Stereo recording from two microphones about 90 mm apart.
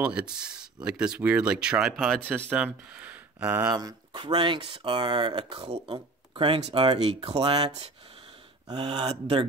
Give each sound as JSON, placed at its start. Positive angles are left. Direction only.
{"t": 0.0, "sound": "speech", "side_deg": -10}
{"t": 2.5, "sound": "speech", "side_deg": -15}
{"t": 3.6, "sound": "speech", "side_deg": -50}
{"t": 8.6, "sound": "speech", "side_deg": -60}